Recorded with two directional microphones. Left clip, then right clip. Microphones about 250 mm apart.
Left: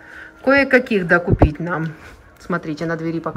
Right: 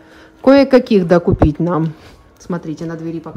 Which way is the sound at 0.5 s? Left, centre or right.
Right.